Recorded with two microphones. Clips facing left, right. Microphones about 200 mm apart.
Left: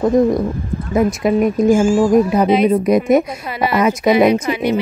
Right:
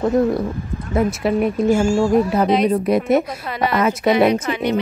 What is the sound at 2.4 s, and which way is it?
Speech, 5° left (ahead or behind).